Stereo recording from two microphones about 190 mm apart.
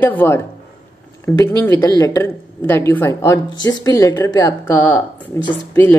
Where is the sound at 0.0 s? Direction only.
10° left (ahead or behind).